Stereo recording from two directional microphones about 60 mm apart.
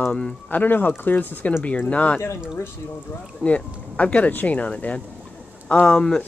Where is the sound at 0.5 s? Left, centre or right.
Left.